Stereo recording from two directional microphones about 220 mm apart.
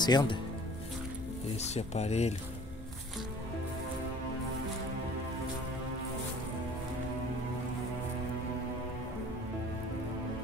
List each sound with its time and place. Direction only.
0.0 s speech: 20° left (ahead or behind)
1.6 s speech: 30° left (ahead or behind)